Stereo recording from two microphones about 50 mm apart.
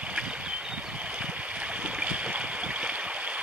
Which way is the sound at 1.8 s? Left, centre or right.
Right.